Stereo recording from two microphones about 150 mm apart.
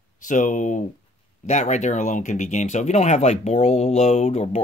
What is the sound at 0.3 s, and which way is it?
Speech, 60° left (ahead or behind).